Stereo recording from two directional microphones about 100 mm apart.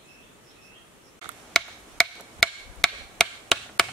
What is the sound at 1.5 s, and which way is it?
Chop, 5° left (ahead or behind).